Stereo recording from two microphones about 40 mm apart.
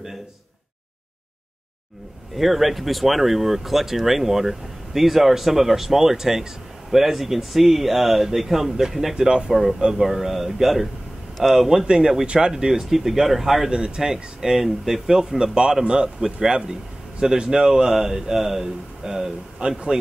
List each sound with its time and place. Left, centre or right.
2.3 s speech: centre
9.1 s speech: centre
9.5 s speech: centre
11.8 s speech: centre
12.9 s speech: centre
13.7 s speech: centre